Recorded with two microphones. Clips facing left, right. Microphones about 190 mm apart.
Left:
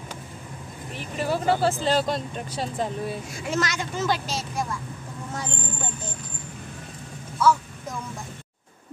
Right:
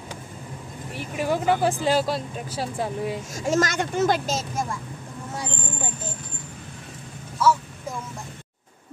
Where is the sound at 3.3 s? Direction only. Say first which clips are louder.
Right 6 dB; 45° right (ahead or behind).